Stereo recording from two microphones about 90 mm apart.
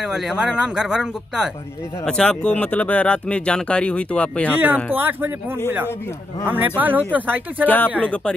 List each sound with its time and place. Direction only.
0.0 s speech: 5° right (ahead or behind)
2.0 s speech: 10° left (ahead or behind)
4.9 s speech: 20° right (ahead or behind)
6.4 s speech: 20° right (ahead or behind)
7.6 s speech: 20° left (ahead or behind)